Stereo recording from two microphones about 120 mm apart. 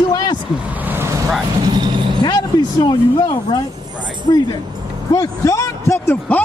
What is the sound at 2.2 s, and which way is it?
A man's voice, 35° left (ahead or behind).